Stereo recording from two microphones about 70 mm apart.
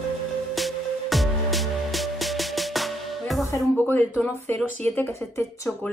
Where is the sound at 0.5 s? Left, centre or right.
Centre.